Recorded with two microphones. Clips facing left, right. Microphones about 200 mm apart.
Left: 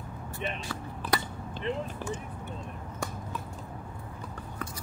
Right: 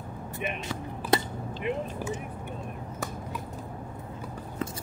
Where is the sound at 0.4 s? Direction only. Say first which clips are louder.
Right 2 dB; 20° right (ahead or behind).